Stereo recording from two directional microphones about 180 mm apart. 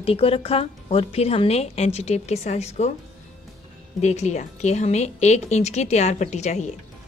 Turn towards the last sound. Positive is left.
turn(degrees=40)  # may be behind; listen again after turning